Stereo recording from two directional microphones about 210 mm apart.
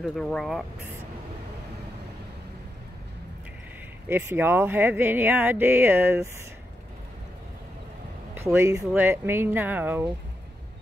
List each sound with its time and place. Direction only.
0.0 s speech: 5° left (ahead or behind)
4.1 s speech: 10° right (ahead or behind)
8.4 s speech: 10° right (ahead or behind)